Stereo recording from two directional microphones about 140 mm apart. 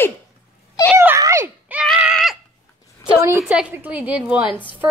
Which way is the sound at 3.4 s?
5° right (ahead or behind).